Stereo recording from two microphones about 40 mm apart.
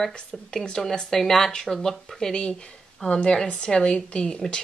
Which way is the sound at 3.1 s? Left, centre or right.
Left.